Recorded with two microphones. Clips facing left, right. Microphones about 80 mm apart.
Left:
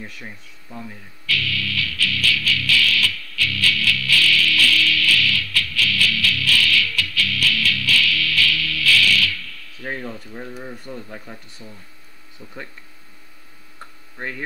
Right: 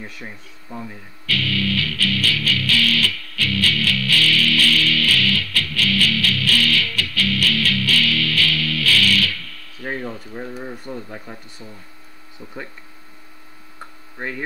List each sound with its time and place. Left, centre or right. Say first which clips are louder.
0.2 s speech: right 2 dB; centre
1.2 s music: right 3 dB; right
10.6 s speech: right 3 dB; centre
13.7 s a sound: right 2 dB; centre